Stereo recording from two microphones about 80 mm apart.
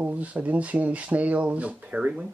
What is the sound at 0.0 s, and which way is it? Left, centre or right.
Speech, centre.